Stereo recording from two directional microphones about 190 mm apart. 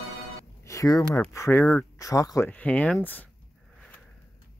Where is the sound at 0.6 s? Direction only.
15° left (ahead or behind).